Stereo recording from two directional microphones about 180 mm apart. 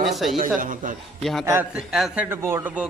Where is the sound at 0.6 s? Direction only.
50° right (ahead or behind).